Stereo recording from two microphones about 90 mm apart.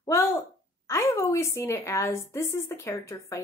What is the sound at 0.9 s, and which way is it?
A woman's voice, 35° left (ahead or behind).